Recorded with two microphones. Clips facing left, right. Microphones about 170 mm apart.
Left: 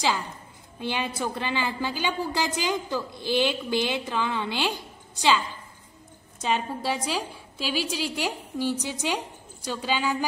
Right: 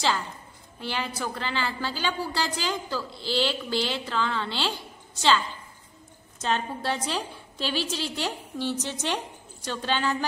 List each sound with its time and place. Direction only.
0.7 s a woman's voice: 20° left (ahead or behind)
6.4 s a woman's voice: 10° left (ahead or behind)